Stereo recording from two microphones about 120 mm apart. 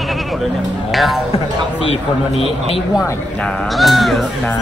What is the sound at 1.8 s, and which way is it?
Speech, 55° left (ahead or behind).